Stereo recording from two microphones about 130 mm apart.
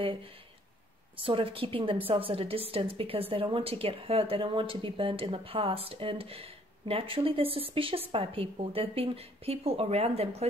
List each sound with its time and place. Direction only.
1.1 s a woman's voice: 45° right (ahead or behind)